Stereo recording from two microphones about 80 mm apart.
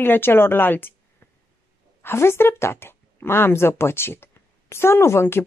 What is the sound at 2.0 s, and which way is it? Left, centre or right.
A woman's voice, left.